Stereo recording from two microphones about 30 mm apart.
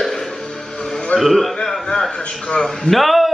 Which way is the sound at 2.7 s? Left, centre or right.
Centre.